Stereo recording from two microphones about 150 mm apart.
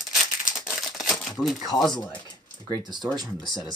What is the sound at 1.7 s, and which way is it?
Speech, centre (ahead or behind).